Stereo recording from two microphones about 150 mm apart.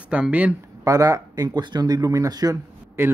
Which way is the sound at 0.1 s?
10° right (ahead or behind).